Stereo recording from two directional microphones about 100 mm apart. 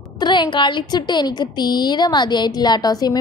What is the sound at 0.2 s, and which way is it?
A woman's voice, 50° left (ahead or behind).